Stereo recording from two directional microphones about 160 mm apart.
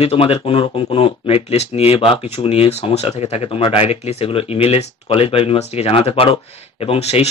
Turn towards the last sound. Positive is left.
turn(degrees=40)  # may be behind; listen again after turning